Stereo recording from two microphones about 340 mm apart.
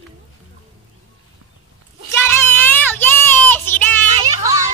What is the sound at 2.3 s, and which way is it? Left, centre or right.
Child singing, centre.